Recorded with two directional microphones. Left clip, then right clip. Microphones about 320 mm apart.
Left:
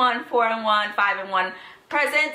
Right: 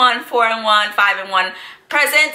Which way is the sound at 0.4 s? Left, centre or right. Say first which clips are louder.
Right 6 dB; centre.